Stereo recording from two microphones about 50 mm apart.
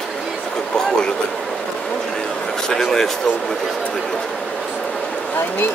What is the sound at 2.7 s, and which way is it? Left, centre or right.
Speech, centre.